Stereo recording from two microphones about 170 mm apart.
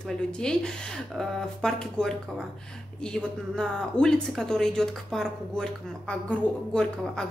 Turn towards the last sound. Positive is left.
turn(degrees=5)  # may be behind; listen again after turning